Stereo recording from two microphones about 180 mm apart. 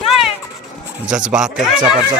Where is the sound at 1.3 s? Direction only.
5° right (ahead or behind).